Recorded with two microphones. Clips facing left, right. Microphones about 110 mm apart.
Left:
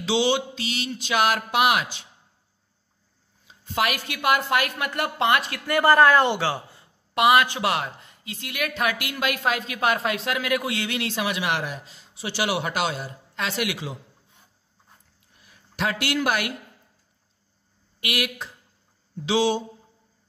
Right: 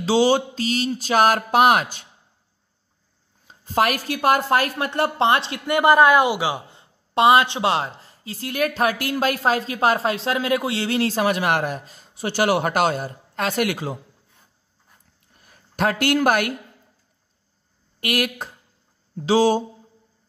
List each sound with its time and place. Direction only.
0.0 s a woman's voice: 40° right (ahead or behind)
3.4 s a woman's voice: 40° right (ahead or behind)
15.3 s a sound: 45° right (ahead or behind)
18.0 s speech: 45° right (ahead or behind)